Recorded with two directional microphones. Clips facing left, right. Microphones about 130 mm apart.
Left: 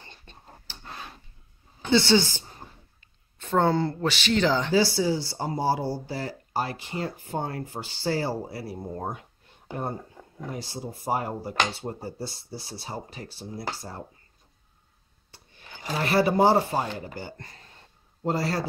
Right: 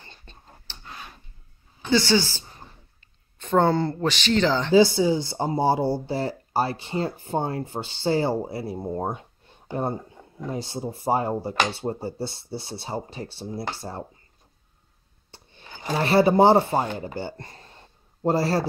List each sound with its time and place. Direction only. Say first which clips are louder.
0.0 s whispering: even; 15° left (ahead or behind)
1.9 s a woman's voice: even; 25° left (ahead or behind)
3.0 s a sound: right 3 dB; 5° left (ahead or behind)
4.4 s speech: right 1 dB; 10° left (ahead or behind)
4.7 s speech: right 5 dB; 20° right (ahead or behind)
15.3 s speech: right 3 dB; 30° right (ahead or behind)